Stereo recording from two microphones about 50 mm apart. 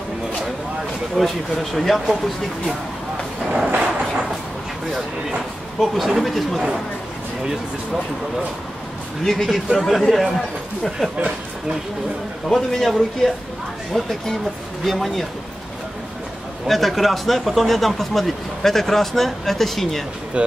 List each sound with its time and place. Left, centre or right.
1.1 s speech: centre
3.4 s a sound: right
4.0 s a sound: centre
5.8 s speech: centre
9.2 s speech: centre
12.4 s speech: centre
16.6 s speech: centre
20.4 s speech: right